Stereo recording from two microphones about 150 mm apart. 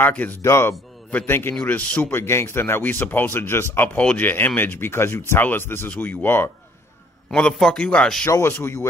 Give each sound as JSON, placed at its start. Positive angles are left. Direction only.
{"t": 0.0, "sound": "a man's voice", "side_deg": 10}
{"t": 7.2, "sound": "a man's voice", "side_deg": 5}
{"t": 8.3, "sound": "a man's voice", "side_deg": 15}